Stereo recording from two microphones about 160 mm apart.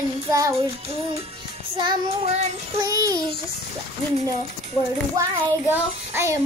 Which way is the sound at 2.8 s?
20° right (ahead or behind).